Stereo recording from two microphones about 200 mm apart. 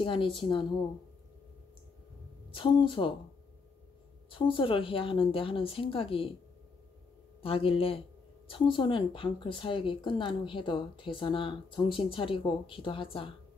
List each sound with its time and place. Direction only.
0.0 s speech: 25° left (ahead or behind)
2.5 s speech: 25° left (ahead or behind)
4.3 s speech: 25° left (ahead or behind)
7.4 s speech: 30° left (ahead or behind)